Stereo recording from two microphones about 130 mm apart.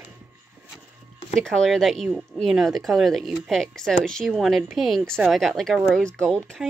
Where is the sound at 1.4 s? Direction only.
Centre (ahead or behind).